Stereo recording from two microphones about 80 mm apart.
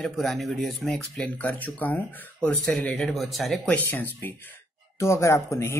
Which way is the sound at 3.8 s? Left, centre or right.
Left.